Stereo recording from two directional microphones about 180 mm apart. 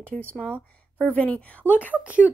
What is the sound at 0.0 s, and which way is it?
A woman's voice, 5° left (ahead or behind).